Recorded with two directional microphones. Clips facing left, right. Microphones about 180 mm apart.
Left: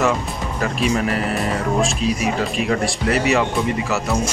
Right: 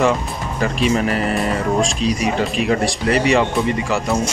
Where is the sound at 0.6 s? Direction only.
Centre (ahead or behind).